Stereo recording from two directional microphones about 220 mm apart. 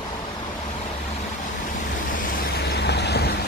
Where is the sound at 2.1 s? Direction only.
40° left (ahead or behind).